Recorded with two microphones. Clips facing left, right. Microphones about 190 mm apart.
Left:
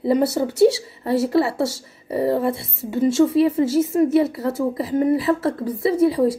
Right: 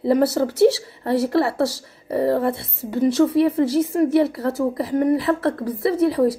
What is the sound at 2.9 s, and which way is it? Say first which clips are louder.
Speech: even; 25° left (ahead or behind).